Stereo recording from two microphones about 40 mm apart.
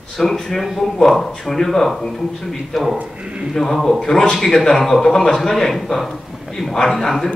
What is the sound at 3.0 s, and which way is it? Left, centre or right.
Speech, right.